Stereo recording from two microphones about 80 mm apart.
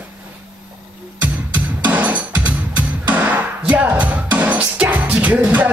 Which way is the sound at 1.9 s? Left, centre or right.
Centre.